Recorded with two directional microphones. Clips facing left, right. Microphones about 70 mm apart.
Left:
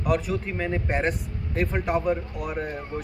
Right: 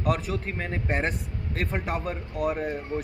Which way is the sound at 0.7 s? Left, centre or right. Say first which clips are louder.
Left 3 dB; centre.